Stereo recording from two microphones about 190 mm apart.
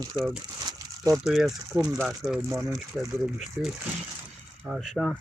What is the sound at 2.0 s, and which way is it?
Speech, centre (ahead or behind).